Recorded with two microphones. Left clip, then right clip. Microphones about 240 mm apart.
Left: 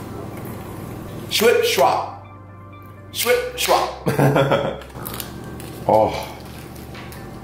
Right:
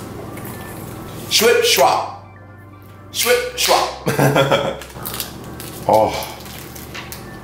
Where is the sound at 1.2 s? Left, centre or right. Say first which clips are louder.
Right 3 dB; centre.